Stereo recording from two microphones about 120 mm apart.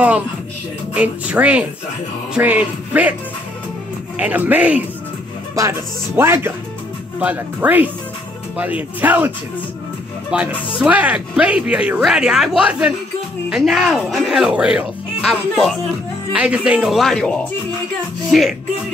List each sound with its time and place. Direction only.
0.9 s speech: 10° right (ahead or behind)
4.2 s speech: 15° right (ahead or behind)
10.8 s speech: 10° right (ahead or behind)
16.3 s speech: 10° right (ahead or behind)